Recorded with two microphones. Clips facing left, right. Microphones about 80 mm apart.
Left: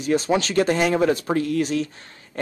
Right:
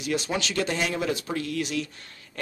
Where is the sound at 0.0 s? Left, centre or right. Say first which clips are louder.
Left 7 dB; left.